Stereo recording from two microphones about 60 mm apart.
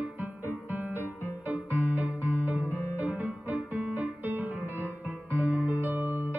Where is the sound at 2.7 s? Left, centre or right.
Right.